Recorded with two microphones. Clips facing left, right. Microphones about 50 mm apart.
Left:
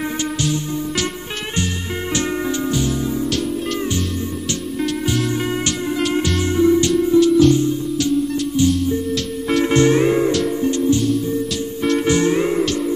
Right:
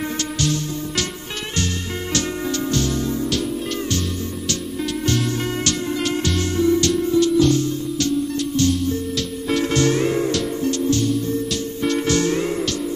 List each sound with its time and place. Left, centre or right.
2.1 s music: centre
6.5 s music: centre
7.2 s music: centre
9.7 s music: left
11.0 s music: centre
12.1 s music: centre